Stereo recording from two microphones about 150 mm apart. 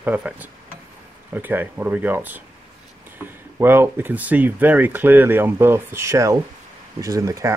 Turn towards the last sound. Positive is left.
turn(degrees=-20)  # may be behind; listen again after turning